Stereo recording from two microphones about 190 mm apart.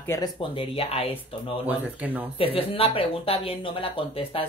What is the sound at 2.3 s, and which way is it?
Speech, 30° left (ahead or behind).